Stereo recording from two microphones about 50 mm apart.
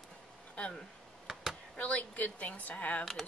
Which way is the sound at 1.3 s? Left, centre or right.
Centre.